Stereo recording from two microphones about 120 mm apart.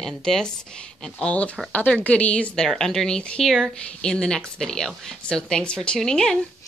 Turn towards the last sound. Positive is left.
turn(degrees=5)  # may be behind; listen again after turning